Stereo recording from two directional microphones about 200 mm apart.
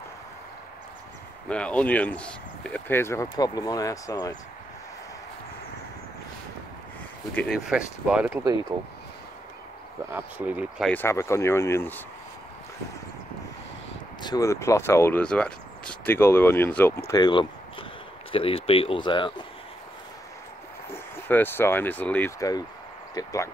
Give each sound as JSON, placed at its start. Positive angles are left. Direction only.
{"t": 1.5, "sound": "speech", "side_deg": 5}
{"t": 7.3, "sound": "speech", "side_deg": 0}
{"t": 8.7, "sound": "speech", "side_deg": -15}
{"t": 10.1, "sound": "speech", "side_deg": -10}
{"t": 10.9, "sound": "speech", "side_deg": 10}
{"t": 14.2, "sound": "speech", "side_deg": 15}
{"t": 17.1, "sound": "speech", "side_deg": 20}
{"t": 20.9, "sound": "speech", "side_deg": 10}